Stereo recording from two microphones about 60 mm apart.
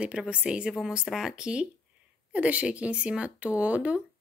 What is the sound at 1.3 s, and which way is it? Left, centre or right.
Speech, centre.